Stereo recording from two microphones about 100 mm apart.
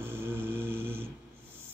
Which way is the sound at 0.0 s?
20° right (ahead or behind).